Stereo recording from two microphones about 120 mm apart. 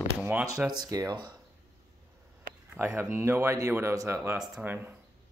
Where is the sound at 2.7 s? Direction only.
20° right (ahead or behind).